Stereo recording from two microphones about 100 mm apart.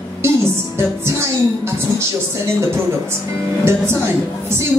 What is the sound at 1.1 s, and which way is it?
Speech, 25° right (ahead or behind).